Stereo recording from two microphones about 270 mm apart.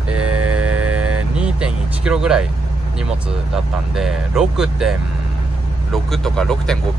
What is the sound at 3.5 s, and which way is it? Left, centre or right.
Speech, centre.